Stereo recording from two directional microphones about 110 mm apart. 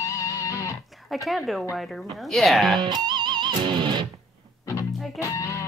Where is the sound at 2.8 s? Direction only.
45° right (ahead or behind).